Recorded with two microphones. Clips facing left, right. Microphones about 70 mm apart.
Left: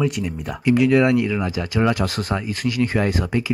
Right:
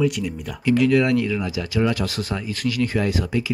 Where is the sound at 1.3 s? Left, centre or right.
Left.